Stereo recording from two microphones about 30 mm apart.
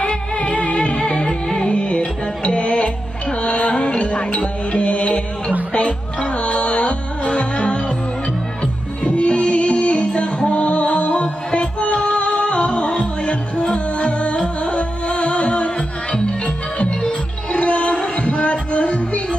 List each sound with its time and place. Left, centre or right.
0.1 s music: left
1.2 s music: left
1.7 s music: left
9.0 s music: left